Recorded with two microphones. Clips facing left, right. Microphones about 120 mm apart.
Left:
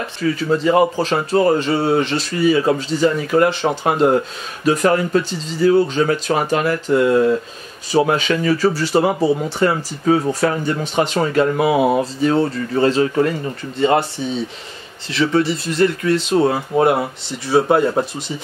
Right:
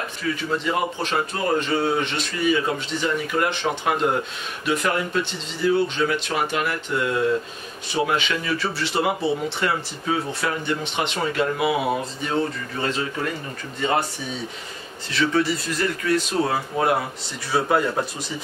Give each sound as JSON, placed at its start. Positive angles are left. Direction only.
{"t": 0.4, "sound": "speech", "side_deg": 35}
{"t": 5.5, "sound": "speech", "side_deg": 40}
{"t": 15.1, "sound": "speech", "side_deg": 25}